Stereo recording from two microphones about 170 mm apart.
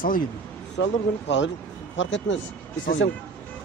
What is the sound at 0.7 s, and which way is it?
Speech, 90° left.